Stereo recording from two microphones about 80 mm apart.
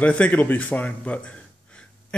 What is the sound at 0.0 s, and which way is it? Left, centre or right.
A man's voice, centre.